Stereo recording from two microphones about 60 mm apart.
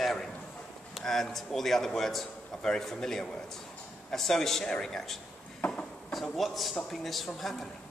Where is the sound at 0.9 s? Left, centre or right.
Centre.